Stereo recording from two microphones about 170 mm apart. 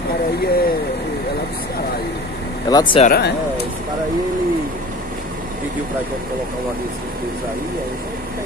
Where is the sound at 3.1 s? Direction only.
70° left (ahead or behind).